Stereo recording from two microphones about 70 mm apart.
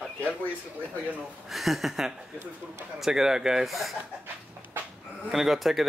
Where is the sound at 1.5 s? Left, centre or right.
Centre.